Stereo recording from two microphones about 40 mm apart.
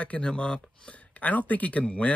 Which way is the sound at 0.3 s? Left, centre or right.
Left.